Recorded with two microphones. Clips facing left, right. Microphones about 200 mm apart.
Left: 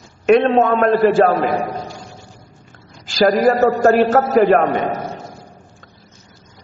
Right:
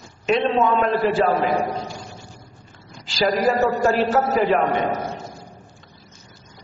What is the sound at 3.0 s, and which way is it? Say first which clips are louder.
A man's voice: left 6 dB; 50° left (ahead or behind).